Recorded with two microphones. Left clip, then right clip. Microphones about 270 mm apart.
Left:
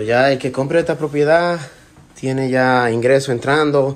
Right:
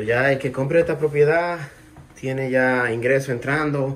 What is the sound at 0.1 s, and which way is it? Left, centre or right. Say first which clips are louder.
Speech: left 5 dB; centre.